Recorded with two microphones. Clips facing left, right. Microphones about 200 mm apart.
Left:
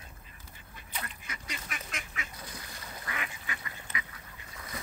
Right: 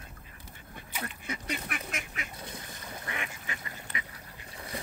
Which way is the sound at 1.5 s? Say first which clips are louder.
Right 5 dB; 60° right (ahead or behind).